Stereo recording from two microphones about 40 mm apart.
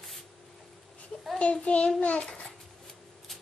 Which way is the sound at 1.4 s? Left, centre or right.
Left.